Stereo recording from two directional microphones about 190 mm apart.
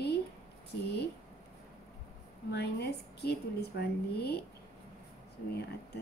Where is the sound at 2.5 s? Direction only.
60° left (ahead or behind).